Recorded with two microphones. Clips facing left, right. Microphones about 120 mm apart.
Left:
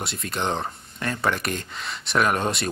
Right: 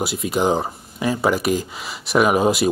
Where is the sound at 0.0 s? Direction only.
5° right (ahead or behind).